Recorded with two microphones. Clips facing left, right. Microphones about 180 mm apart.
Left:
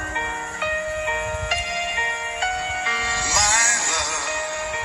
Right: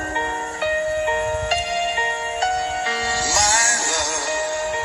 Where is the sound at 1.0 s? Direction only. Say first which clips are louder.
Right 5 dB; 40° right (ahead or behind).